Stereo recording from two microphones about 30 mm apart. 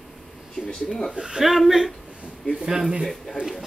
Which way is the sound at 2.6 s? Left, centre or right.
Centre.